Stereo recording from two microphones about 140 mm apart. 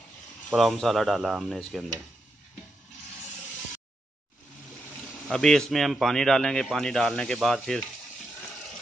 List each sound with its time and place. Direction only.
0.5 s speech: centre (ahead or behind)
5.3 s speech: 5° left (ahead or behind)